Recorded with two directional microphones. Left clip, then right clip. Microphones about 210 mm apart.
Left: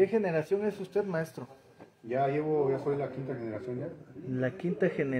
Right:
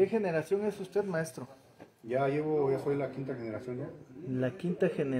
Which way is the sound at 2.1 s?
20° right (ahead or behind).